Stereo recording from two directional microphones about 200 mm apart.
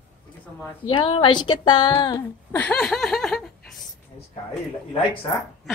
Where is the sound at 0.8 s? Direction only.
25° left (ahead or behind).